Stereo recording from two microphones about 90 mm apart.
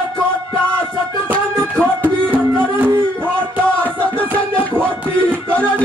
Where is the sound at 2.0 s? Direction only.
20° right (ahead or behind).